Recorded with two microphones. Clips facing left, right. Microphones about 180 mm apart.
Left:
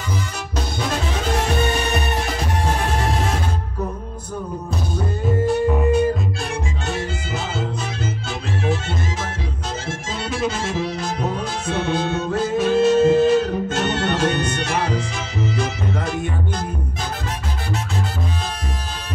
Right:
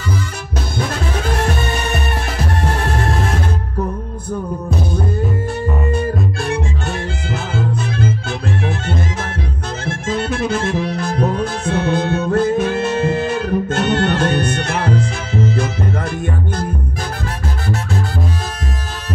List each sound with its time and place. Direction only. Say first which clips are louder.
9.8 s music: right 10 dB; 55° right (ahead or behind)